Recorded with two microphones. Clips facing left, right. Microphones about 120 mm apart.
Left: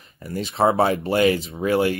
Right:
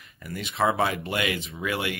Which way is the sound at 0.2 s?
35° left (ahead or behind).